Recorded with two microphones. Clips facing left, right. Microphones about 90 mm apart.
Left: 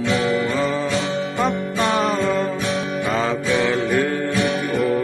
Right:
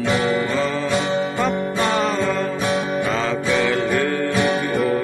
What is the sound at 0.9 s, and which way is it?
Music, 40° right (ahead or behind).